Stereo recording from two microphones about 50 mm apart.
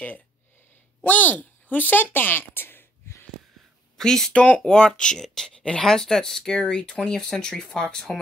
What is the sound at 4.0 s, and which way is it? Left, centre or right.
Speech, centre.